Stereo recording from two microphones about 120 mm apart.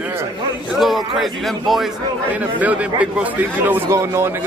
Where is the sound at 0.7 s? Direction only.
Centre (ahead or behind).